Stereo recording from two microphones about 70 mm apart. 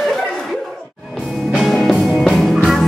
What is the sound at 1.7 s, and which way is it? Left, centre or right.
Music, centre.